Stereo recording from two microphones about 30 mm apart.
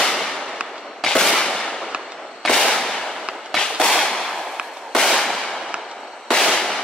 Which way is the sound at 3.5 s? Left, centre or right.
Centre.